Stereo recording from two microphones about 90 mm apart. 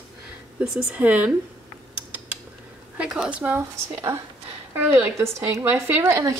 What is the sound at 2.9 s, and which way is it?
Speech, 10° right (ahead or behind).